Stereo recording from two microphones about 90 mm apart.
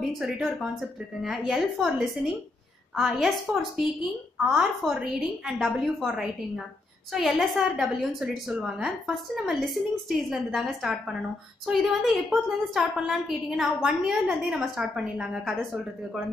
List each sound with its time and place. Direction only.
0.1 s a woman's voice: centre (ahead or behind)